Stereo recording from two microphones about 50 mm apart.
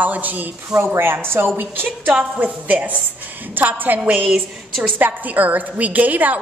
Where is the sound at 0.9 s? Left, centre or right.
Right.